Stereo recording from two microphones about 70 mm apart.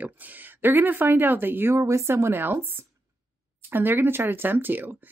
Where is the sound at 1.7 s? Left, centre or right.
Right.